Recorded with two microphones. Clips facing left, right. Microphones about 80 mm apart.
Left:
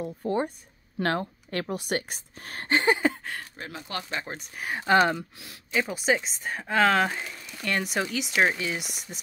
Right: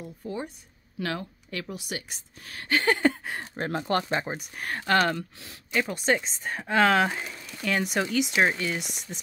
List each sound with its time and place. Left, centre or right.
0.0 s speech: left
0.9 s speech: left
2.7 s a sound: left
3.5 s speech: right
4.6 s speech: centre
5.4 s speech: centre